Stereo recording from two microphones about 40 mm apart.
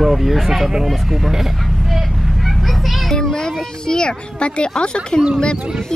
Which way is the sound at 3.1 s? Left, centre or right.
Centre.